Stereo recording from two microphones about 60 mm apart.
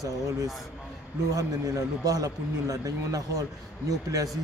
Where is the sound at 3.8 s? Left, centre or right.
Right.